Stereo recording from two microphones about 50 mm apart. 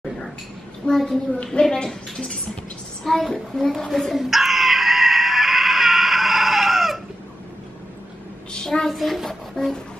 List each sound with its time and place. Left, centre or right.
0.8 s a woman's voice: centre
1.4 s a woman's voice: centre
3.0 s a woman's voice: centre
4.1 s screaming: centre
8.5 s a sound: centre
8.8 s speech: centre